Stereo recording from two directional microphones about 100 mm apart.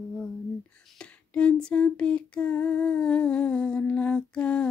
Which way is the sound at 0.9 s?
10° left (ahead or behind).